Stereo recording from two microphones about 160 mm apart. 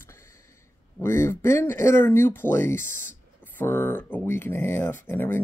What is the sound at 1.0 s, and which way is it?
Speech, 15° left (ahead or behind).